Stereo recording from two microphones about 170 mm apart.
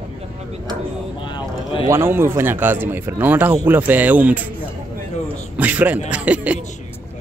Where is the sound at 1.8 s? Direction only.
15° right (ahead or behind).